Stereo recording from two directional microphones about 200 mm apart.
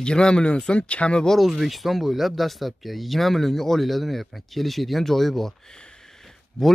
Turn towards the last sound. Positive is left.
turn(degrees=0)  # may be behind; listen again after turning